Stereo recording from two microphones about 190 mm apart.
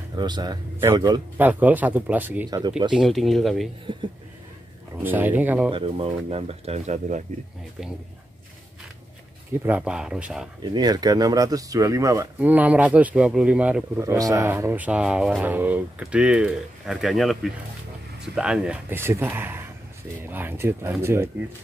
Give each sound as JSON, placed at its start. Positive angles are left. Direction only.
{"t": 0.1, "sound": "speech", "side_deg": -20}
{"t": 1.4, "sound": "speech", "side_deg": -10}
{"t": 4.9, "sound": "speech", "side_deg": -10}
{"t": 5.7, "sound": "speech", "side_deg": -30}
{"t": 9.7, "sound": "speech", "side_deg": -5}
{"t": 10.6, "sound": "speech", "side_deg": -20}